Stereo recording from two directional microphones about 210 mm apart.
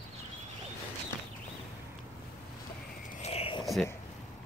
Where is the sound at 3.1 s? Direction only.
30° left (ahead or behind).